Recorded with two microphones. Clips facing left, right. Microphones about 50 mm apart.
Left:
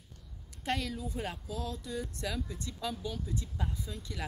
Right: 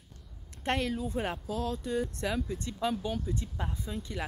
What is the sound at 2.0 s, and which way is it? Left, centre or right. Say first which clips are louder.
Speech: right 5 dB; right.